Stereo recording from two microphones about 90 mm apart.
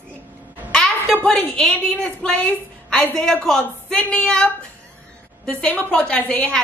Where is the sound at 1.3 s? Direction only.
20° left (ahead or behind).